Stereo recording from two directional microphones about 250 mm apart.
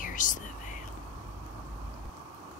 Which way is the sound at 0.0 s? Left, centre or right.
Left.